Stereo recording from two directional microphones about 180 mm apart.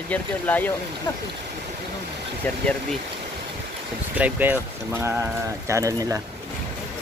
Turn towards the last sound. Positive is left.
turn(degrees=-15)  # may be behind; listen again after turning